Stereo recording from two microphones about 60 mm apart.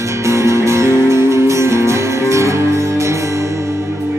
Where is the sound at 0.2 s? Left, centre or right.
Right.